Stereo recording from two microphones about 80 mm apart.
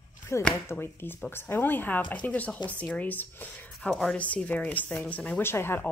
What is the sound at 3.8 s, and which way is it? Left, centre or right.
Speech, centre.